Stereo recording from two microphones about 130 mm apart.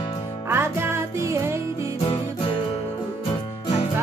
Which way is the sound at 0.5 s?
20° right (ahead or behind).